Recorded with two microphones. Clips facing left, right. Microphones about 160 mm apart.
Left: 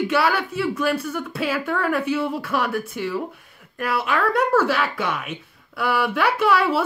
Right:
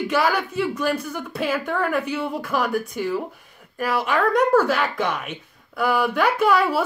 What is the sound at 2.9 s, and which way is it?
Speech, 45° right (ahead or behind).